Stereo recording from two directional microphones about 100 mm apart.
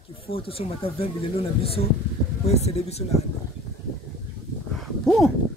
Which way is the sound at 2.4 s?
90° left.